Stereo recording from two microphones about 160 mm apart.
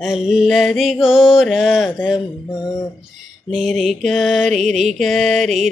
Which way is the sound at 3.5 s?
Centre (ahead or behind).